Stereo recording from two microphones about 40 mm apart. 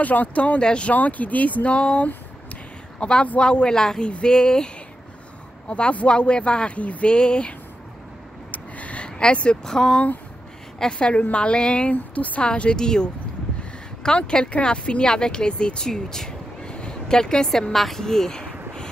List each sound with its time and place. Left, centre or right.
0.0 s speech: left
0.6 s speech: left
0.9 s speech: left; by 4.6 s centre
5.7 s speech: left
7.1 s speech: left
8.5 s a sound: left
9.2 s speech: left
9.7 s speech: centre
11.9 s speech: left
12.4 s speech: left
15.9 s a sound: centre
17.7 s speech: centre